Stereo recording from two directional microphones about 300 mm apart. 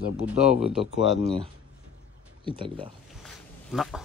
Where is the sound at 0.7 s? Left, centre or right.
Centre.